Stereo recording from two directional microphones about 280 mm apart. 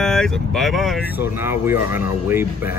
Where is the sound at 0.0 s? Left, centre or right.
Centre.